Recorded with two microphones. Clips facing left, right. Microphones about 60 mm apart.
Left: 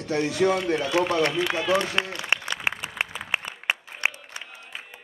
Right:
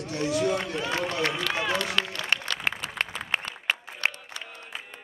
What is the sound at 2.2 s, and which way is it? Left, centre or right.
Applause, centre.